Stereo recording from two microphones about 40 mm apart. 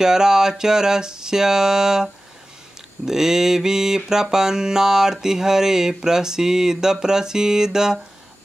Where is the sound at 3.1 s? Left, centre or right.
Centre.